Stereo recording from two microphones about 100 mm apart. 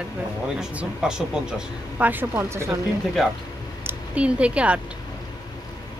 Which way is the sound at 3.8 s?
15° right (ahead or behind).